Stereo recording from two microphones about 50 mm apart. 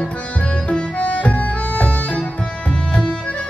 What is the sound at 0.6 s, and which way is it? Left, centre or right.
Music, left.